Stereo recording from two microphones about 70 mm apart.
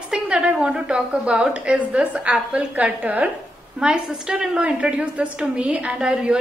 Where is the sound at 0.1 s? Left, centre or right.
Centre.